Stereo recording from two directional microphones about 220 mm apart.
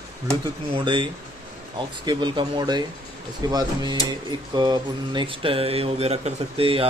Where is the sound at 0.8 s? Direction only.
20° right (ahead or behind).